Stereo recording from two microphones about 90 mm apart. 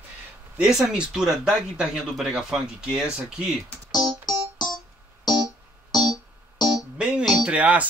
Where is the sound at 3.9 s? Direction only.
50° left (ahead or behind).